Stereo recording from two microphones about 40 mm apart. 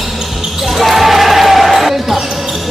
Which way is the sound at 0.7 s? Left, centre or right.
Centre.